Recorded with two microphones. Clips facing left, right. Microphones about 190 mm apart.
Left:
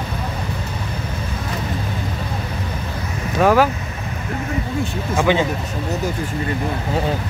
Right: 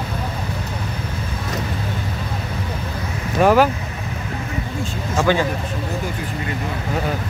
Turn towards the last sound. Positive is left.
turn(degrees=20)  # may be behind; listen again after turning